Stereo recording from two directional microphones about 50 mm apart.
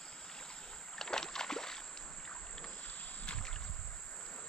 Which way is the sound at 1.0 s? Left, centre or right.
Centre.